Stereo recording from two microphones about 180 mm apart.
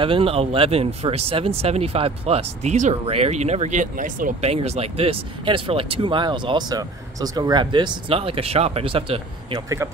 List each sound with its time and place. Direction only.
0.0 s speech: 30° right (ahead or behind)